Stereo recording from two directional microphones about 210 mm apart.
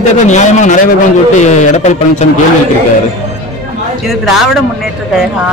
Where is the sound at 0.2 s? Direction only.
35° left (ahead or behind).